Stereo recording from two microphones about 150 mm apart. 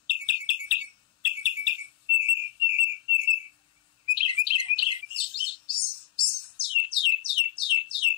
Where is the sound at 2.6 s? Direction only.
35° left (ahead or behind).